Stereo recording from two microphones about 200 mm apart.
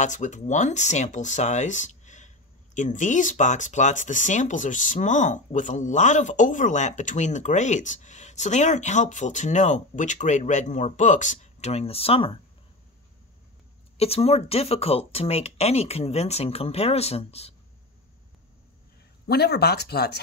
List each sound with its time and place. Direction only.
0.0 s speech: 40° left (ahead or behind)
13.9 s speech: 30° left (ahead or behind)
19.2 s speech: 55° left (ahead or behind)